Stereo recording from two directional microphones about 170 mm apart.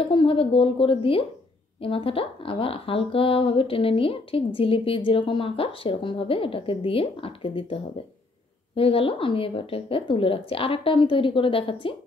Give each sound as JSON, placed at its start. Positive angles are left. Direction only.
{"t": 0.1, "sound": "speech", "side_deg": 30}